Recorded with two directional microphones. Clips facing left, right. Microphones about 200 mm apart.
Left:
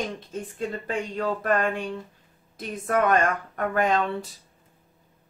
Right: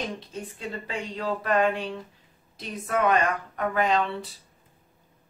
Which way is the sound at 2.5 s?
50° left (ahead or behind).